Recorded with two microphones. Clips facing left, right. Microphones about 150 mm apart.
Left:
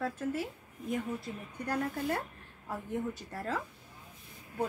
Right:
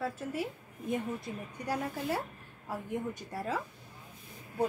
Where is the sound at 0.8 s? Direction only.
25° right (ahead or behind).